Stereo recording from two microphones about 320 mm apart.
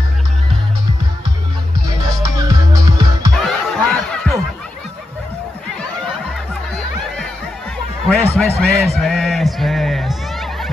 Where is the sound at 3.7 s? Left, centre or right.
Centre.